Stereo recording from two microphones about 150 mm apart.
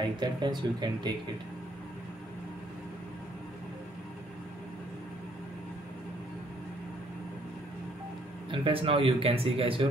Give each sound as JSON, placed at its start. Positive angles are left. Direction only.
{"t": 0.2, "sound": "speech", "side_deg": -30}
{"t": 8.5, "sound": "speech", "side_deg": -35}